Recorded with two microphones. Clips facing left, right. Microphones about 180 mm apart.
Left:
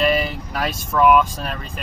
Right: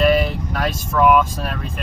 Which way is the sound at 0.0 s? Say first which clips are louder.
Right 3 dB; centre (ahead or behind).